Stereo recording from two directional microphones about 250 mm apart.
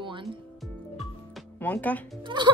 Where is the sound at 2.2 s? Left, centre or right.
Centre.